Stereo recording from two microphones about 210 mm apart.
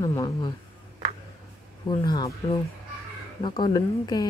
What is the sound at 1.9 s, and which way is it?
Speech, 20° left (ahead or behind).